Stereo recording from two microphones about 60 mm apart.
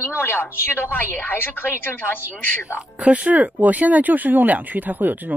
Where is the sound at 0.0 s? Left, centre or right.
Left.